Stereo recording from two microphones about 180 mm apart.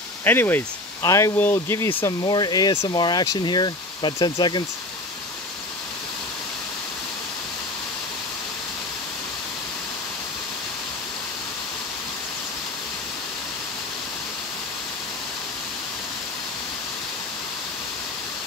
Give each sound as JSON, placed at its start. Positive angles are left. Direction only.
{"t": 0.2, "sound": "speech", "side_deg": 10}